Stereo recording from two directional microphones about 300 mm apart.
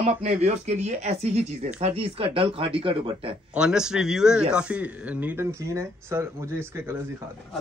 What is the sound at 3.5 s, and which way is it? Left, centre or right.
A man's voice, centre.